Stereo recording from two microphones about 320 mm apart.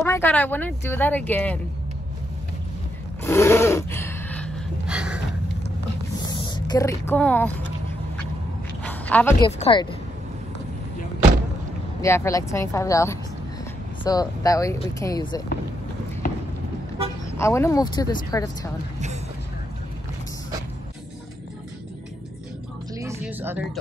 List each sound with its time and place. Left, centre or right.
0.0 s speech: centre
3.2 s gasp: centre
6.2 s speech: centre
8.8 s a sound: centre
9.5 s speech: centre
12.0 s speech: centre
17.4 s speech: centre
22.9 s speech: centre